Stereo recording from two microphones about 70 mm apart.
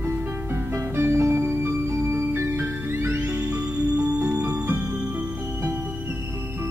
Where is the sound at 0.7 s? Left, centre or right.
Right.